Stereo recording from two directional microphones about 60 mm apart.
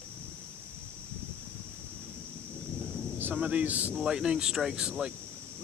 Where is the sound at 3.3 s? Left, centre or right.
Right.